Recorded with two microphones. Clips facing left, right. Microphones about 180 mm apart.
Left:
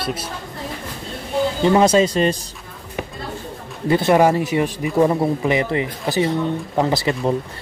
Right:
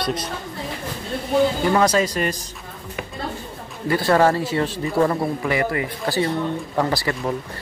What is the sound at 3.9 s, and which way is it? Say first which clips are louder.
Speech: left 2 dB; 20° left (ahead or behind).